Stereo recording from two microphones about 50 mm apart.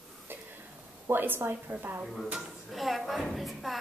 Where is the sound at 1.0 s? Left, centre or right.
Right.